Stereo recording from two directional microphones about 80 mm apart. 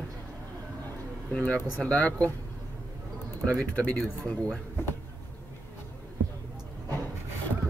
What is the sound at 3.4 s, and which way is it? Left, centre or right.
Speech, centre.